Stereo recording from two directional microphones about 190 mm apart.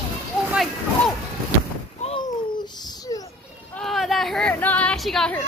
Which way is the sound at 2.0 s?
25° left (ahead or behind).